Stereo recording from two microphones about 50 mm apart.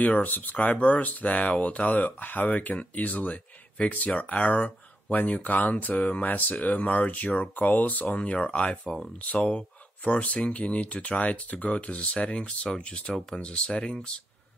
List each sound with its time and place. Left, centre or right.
0.0 s speech: left
8.2 s speech: left
8.8 s speech: centre
9.2 s speech: left